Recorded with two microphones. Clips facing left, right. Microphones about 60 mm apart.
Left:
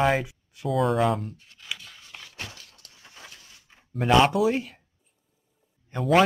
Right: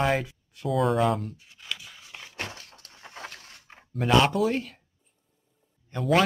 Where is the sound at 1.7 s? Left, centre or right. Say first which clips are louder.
Even; centre.